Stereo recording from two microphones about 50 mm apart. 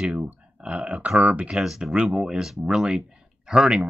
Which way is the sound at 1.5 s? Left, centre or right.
Centre.